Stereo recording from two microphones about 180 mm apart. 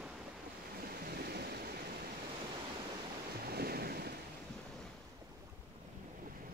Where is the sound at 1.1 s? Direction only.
60° right (ahead or behind).